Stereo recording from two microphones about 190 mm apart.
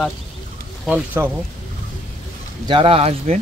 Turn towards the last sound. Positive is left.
turn(degrees=-35)  # may be behind; listen again after turning